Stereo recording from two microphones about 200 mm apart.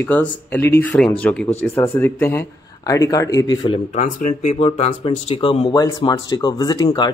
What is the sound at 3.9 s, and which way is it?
Speech, 35° left (ahead or behind).